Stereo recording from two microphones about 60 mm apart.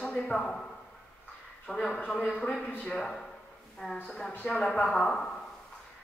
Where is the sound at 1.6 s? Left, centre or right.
Centre.